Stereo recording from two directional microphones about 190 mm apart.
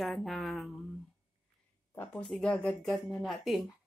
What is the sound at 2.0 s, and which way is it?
Speech, 5° left (ahead or behind).